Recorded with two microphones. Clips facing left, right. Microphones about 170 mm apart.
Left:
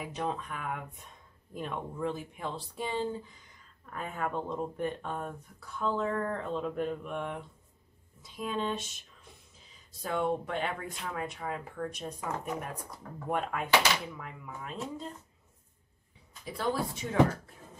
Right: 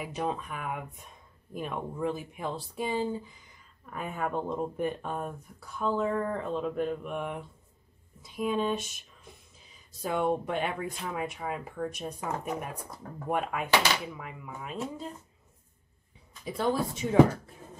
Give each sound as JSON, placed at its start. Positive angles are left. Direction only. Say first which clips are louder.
{"t": 0.0, "sound": "speech", "louder": "right 2 dB", "side_deg": -10}
{"t": 10.0, "sound": "speech", "louder": "right 3 dB", "side_deg": -15}
{"t": 13.3, "sound": "speech", "louder": "right 1 dB", "side_deg": -10}
{"t": 16.4, "sound": "a woman's voice", "louder": "right 3 dB", "side_deg": -20}